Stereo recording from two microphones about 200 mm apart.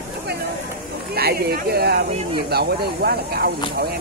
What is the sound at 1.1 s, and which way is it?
Speech, 50° right (ahead or behind).